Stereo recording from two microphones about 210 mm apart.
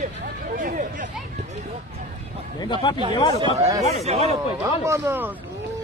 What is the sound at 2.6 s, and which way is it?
Speech, 20° left (ahead or behind).